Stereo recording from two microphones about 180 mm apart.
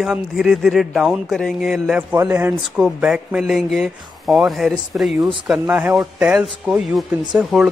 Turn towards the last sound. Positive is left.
turn(degrees=0)  # may be behind; listen again after turning